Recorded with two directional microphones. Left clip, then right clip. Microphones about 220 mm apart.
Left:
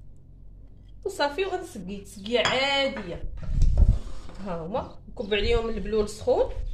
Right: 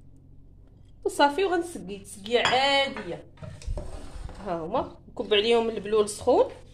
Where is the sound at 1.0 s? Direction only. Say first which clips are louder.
Right 4 dB; 35° right (ahead or behind).